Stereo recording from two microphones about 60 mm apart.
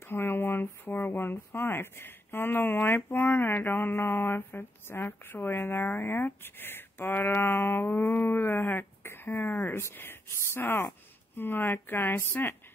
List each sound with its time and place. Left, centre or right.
0.0 s speech: left